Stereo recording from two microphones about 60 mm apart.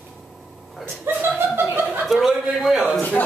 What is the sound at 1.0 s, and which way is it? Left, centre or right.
Chuckle, right.